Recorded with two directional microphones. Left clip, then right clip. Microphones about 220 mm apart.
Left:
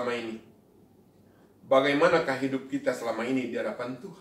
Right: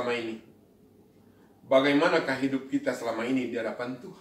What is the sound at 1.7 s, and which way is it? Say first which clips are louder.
A man's voice: left 1 dB; 15° left (ahead or behind).